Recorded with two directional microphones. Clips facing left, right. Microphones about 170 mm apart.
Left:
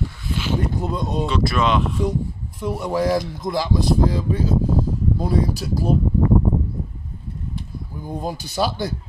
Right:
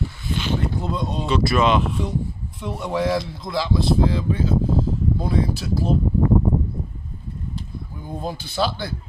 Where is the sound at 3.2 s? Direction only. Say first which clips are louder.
Left 5 dB; 45° left (ahead or behind).